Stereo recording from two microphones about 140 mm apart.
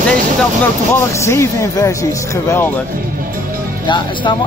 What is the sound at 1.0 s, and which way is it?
Speech, 20° left (ahead or behind).